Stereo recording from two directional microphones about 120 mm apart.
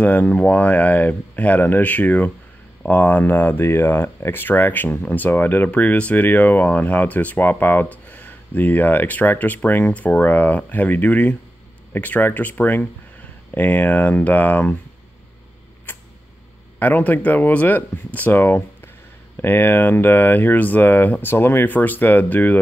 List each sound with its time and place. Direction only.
0.0 s speech: 15° left (ahead or behind)
15.9 s a sound: 15° left (ahead or behind)
16.8 s speech: 15° left (ahead or behind)